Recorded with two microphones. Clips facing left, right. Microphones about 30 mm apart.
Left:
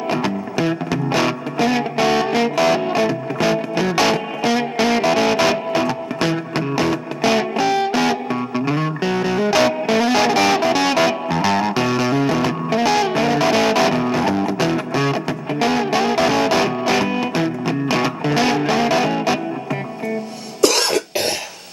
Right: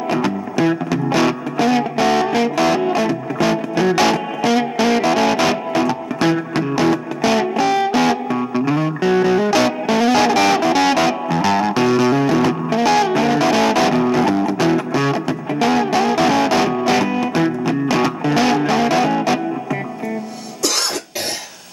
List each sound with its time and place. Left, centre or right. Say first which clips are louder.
0.1 s music: right 2 dB; centre
8.3 s music: right 2 dB; centre
9.0 s music: right 5 dB; centre
17.0 s music: right 1 dB; left
17.4 s music: right 3 dB; centre